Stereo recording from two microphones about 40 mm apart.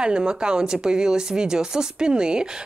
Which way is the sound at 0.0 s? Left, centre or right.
Right.